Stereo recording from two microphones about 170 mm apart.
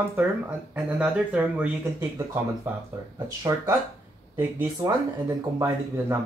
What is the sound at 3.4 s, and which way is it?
Speech, 20° right (ahead or behind).